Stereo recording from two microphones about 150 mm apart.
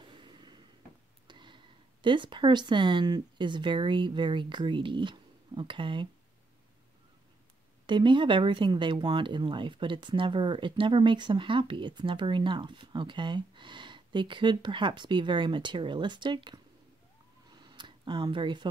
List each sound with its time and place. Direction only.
0.0 s a sound: 30° right (ahead or behind)
2.0 s speech: 30° right (ahead or behind)
7.8 s speech: 30° right (ahead or behind)
17.5 s camera: 30° right (ahead or behind)